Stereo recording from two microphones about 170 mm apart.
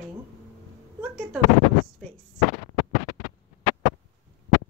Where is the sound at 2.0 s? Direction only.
5° left (ahead or behind).